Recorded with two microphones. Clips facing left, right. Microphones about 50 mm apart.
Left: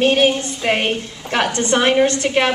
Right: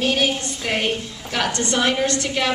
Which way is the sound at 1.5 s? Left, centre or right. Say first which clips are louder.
Left 5 dB; left.